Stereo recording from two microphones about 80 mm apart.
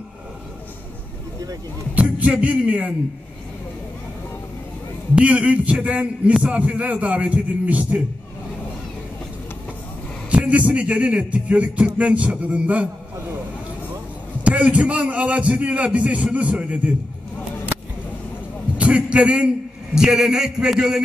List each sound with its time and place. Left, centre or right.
2.0 s music: centre
5.1 s speech: centre
10.3 s speech: centre
14.4 s speech: centre
18.8 s a man's voice: centre